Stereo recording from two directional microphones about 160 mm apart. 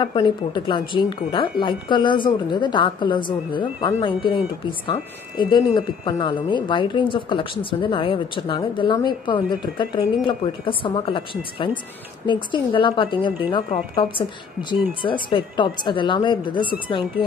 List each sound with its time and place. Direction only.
0.0 s a woman's voice: 30° left (ahead or behind)